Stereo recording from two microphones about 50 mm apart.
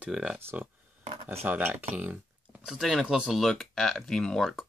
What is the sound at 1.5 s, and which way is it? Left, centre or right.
Speech, right.